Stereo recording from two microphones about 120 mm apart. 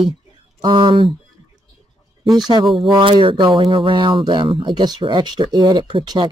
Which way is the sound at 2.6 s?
Centre (ahead or behind).